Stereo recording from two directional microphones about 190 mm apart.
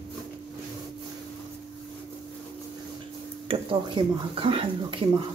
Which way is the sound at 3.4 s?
25° right (ahead or behind).